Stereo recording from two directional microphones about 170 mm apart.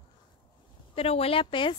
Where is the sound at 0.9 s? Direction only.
35° left (ahead or behind).